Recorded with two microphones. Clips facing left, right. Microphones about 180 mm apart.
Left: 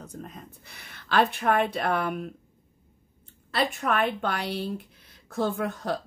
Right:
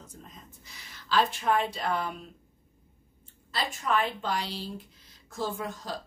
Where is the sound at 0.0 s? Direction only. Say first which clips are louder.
Left 8 dB; 60° left (ahead or behind).